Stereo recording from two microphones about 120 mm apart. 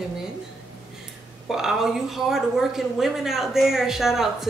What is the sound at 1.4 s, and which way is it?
A woman's voice, 5° right (ahead or behind).